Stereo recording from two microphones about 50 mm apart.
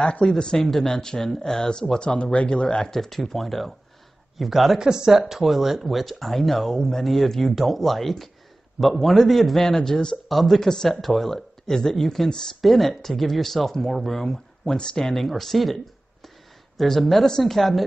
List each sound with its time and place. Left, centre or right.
0.0 s speech: centre
1.7 s speech: centre
3.0 s speech: centre
4.7 s speech: centre
10.2 s speech: centre